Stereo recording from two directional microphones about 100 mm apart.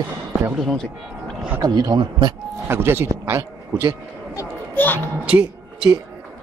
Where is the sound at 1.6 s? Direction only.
40° right (ahead or behind).